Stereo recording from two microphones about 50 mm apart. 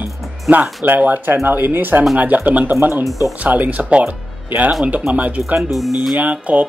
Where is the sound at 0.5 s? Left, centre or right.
Right.